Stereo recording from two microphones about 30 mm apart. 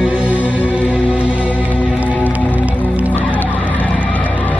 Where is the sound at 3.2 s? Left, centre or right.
Left.